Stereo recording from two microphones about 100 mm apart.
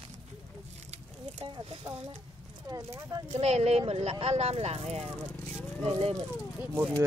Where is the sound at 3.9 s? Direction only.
80° right.